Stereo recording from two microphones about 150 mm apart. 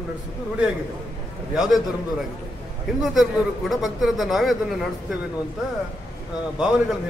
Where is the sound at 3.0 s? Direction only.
Centre (ahead or behind).